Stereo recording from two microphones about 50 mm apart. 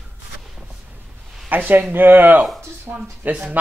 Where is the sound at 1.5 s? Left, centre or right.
Right.